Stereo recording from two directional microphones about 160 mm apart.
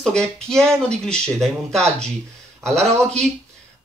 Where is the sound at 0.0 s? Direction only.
5° left (ahead or behind).